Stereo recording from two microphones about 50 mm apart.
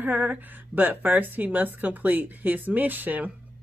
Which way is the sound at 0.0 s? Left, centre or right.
Right.